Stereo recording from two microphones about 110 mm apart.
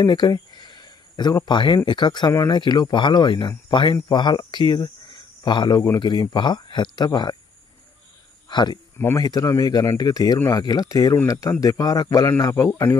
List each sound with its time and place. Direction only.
0.0 s speech: 40° left (ahead or behind)
8.5 s speech: 45° left (ahead or behind)
8.9 s speech: 20° left (ahead or behind)
9.2 s speech: 35° left (ahead or behind)